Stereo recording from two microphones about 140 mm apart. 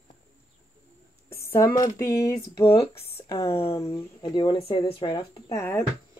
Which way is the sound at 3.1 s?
30° left (ahead or behind).